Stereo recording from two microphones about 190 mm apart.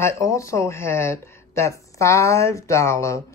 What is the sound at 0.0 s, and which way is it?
Speech, 15° left (ahead or behind).